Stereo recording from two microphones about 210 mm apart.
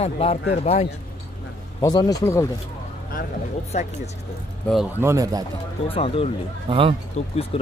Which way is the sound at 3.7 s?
35° left (ahead or behind).